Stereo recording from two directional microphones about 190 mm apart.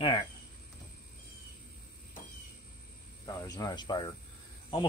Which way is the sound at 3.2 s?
15° left (ahead or behind).